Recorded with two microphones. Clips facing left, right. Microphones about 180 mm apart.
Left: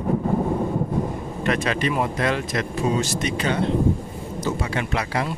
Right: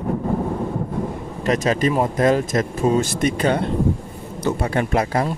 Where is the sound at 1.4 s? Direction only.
40° right (ahead or behind).